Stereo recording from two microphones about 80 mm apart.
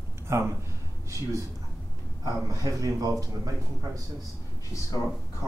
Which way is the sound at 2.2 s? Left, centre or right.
Right.